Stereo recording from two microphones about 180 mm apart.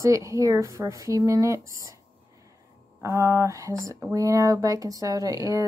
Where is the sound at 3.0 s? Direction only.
15° right (ahead or behind).